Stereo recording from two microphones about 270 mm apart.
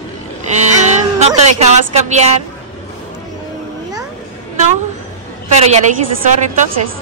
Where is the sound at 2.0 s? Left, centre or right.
Right.